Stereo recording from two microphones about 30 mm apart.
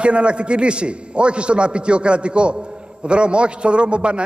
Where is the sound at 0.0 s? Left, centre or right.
Right.